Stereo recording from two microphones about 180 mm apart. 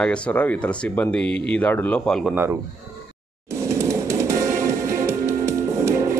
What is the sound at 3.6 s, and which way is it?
Music, 15° right (ahead or behind).